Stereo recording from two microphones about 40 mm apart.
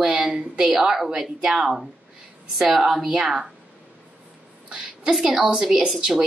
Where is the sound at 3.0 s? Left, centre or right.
Right.